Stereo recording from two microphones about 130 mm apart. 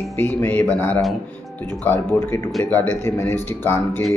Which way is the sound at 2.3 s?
20° left (ahead or behind).